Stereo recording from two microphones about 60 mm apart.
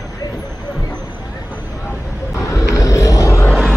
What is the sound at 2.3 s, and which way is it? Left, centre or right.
Vehicle, left.